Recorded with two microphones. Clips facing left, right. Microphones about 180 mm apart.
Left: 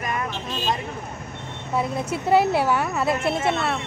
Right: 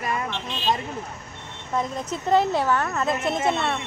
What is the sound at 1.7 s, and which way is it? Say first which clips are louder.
A woman's voice: left 2 dB; 10° left (ahead or behind).